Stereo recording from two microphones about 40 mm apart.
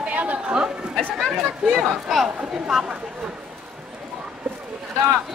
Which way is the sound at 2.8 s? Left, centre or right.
Right.